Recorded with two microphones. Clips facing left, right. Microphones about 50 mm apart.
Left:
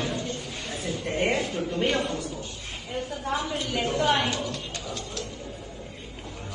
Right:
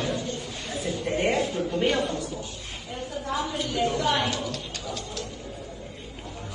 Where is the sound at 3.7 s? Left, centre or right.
Left.